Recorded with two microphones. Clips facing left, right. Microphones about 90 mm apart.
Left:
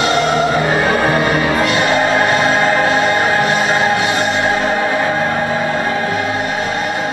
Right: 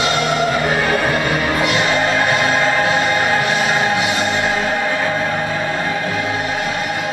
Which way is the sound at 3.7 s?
35° left (ahead or behind).